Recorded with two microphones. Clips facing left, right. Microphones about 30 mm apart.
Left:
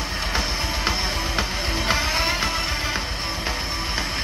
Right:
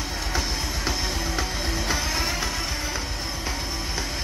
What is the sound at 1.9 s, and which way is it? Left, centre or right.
Music, left.